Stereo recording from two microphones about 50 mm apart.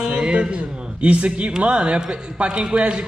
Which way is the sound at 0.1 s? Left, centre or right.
Right.